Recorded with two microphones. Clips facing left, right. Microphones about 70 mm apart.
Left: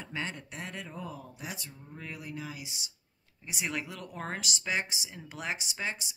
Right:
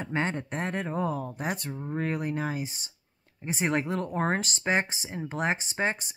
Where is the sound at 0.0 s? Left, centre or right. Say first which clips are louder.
Right 8 dB; right.